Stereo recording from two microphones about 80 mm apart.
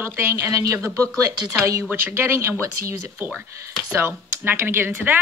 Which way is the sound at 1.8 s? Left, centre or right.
Right.